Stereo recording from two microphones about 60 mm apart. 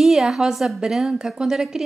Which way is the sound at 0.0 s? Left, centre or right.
Centre.